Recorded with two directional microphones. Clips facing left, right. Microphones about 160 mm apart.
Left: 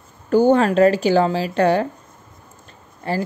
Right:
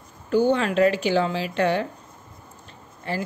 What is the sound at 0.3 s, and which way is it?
A woman's voice, 45° left (ahead or behind).